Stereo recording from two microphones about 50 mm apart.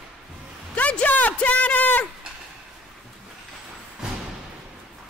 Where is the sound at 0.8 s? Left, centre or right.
Left.